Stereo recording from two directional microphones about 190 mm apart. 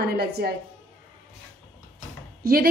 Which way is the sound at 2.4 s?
50° right (ahead or behind).